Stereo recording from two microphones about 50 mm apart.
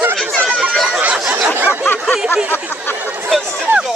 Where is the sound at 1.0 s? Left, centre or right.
Right.